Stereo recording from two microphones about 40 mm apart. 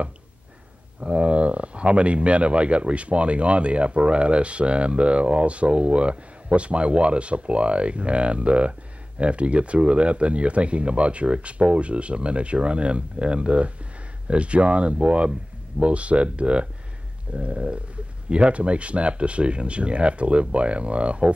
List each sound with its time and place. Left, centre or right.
1.0 s speech: right